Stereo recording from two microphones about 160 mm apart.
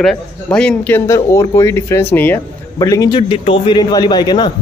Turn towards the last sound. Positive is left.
turn(degrees=25)  # may be behind; listen again after turning